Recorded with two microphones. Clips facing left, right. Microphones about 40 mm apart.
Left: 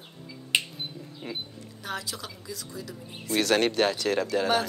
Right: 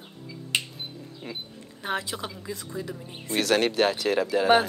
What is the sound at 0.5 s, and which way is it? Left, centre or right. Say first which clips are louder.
Music: left 2 dB; centre.